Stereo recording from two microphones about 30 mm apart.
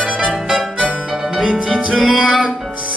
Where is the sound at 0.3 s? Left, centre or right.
Centre.